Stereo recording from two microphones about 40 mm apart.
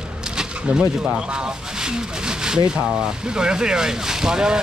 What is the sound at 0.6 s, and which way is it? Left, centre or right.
Speech, right.